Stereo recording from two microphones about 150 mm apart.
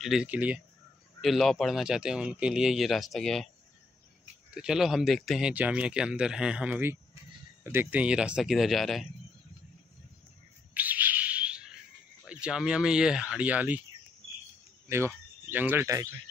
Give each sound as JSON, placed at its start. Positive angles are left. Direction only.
{"t": 0.0, "sound": "speech", "side_deg": -5}
{"t": 4.6, "sound": "speech", "side_deg": -5}
{"t": 10.7, "sound": "bird", "side_deg": -10}
{"t": 12.3, "sound": "speech", "side_deg": -5}
{"t": 14.9, "sound": "speech", "side_deg": -15}